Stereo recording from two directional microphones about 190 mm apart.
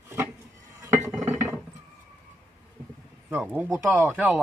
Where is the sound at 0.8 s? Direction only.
15° right (ahead or behind).